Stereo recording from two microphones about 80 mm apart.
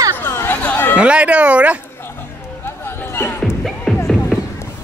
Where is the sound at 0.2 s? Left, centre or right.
Left.